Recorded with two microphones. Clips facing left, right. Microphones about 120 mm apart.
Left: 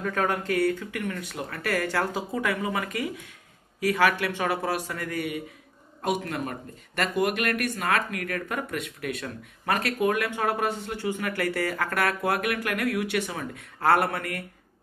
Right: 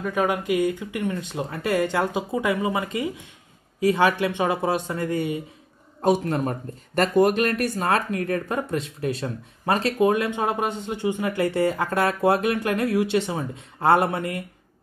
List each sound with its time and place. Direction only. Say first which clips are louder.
0.0 s a man's voice: right 3 dB; 15° right (ahead or behind)